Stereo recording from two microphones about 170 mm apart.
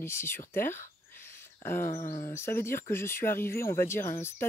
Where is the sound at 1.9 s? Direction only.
45° left (ahead or behind).